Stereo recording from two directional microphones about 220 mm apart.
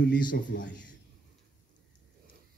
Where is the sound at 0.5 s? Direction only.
50° left (ahead or behind).